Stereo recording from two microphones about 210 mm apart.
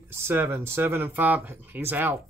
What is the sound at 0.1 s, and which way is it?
Speech, 10° right (ahead or behind).